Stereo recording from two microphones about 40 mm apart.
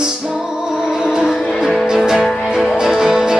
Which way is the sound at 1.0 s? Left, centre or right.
Centre.